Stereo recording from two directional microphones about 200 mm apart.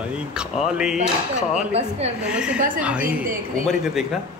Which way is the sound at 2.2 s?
5° right (ahead or behind).